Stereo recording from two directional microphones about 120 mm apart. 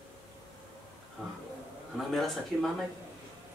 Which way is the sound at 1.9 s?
Centre (ahead or behind).